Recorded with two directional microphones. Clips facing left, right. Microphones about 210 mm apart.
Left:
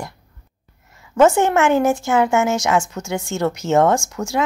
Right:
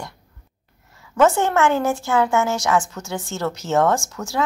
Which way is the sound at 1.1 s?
15° left (ahead or behind).